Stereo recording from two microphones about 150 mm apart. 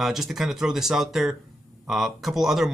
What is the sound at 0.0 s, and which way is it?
Speech, centre (ahead or behind).